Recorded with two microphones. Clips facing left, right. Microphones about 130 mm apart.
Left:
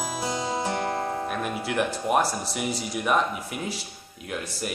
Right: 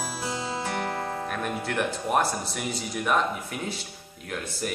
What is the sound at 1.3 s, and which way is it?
Speech, 5° left (ahead or behind).